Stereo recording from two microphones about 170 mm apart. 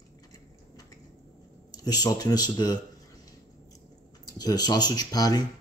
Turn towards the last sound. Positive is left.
turn(degrees=20)  # may be behind; listen again after turning